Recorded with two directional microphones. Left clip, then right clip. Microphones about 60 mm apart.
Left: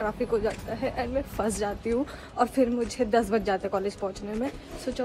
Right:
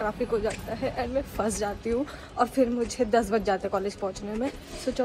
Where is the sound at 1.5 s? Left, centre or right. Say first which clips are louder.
Even; left.